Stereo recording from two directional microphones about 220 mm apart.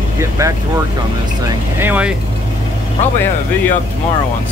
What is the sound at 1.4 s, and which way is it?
Speech, 10° right (ahead or behind).